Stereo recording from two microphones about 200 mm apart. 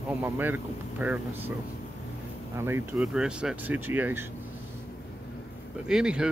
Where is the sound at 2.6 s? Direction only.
10° right (ahead or behind).